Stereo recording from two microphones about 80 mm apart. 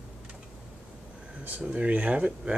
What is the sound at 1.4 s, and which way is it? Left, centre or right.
Speech, centre.